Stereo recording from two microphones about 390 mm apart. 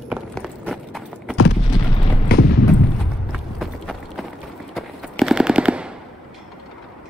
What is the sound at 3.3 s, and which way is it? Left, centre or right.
Run, centre.